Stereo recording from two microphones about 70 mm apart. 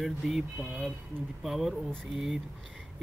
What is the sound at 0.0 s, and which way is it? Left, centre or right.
Speech, centre.